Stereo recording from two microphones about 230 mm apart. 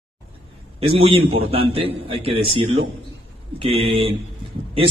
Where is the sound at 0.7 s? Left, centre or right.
Right.